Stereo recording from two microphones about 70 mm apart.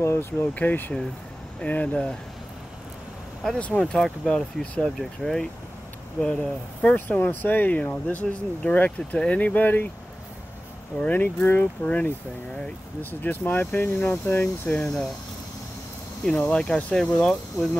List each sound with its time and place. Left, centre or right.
0.0 s speech: left
0.6 s speech: left
3.5 s speech: centre
3.9 s speech: centre
7.1 s speech: left
11.0 s speech: left
16.3 s speech: centre